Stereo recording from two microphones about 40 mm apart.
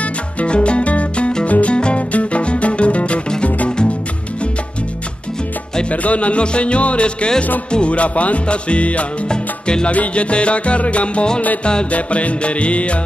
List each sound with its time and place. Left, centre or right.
0.0 s music: left
5.9 s speech: left
9.3 s music: centre
9.8 s speech: left